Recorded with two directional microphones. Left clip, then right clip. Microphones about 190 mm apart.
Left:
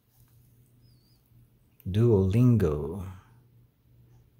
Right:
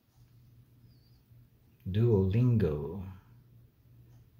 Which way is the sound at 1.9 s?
40° left (ahead or behind).